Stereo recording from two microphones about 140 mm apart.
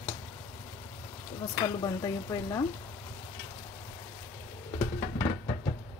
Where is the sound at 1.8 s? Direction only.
25° left (ahead or behind).